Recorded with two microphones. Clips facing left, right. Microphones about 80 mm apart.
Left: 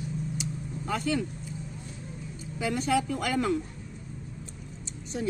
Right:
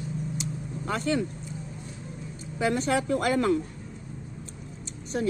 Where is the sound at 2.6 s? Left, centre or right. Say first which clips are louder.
Right 2 dB; right.